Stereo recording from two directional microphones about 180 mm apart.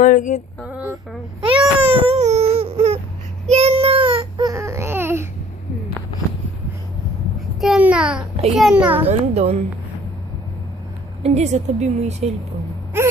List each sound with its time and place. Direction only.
0.0 s a sound: 45° left (ahead or behind)
0.7 s a child's voice: 5° right (ahead or behind)
1.4 s baby cry: 30° right (ahead or behind)
3.4 s a sound: 35° right (ahead or behind); by 5.3 s 15° right (ahead or behind)
7.6 s a child's voice: 5° right (ahead or behind)
9.0 s a woman's voice: 35° right (ahead or behind)
11.2 s a woman's voice: 35° right (ahead or behind)